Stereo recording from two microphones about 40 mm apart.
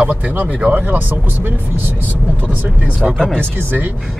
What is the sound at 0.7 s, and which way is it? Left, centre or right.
Speech, right.